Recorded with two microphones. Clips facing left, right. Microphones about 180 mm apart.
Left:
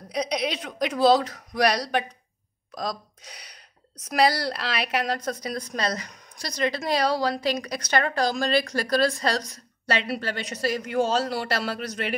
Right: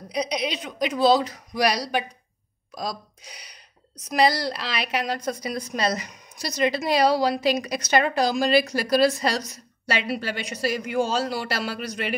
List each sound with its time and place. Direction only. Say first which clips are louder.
0.1 s a woman's voice: even; centre (ahead or behind)